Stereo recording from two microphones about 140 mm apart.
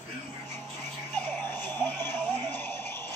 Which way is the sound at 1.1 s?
15° left (ahead or behind).